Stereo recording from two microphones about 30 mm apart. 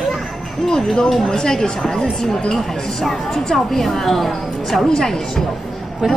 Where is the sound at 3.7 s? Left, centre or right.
Centre.